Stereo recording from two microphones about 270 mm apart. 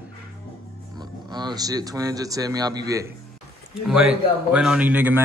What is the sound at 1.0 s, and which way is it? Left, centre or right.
Speech, centre.